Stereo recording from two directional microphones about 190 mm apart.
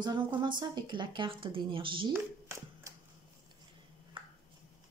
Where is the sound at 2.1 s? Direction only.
15° right (ahead or behind).